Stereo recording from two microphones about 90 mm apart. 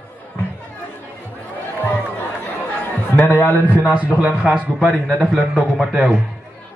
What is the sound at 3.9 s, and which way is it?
A man's voice, 15° right (ahead or behind).